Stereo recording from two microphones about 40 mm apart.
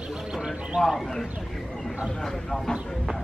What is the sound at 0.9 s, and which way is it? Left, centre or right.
Speech, centre.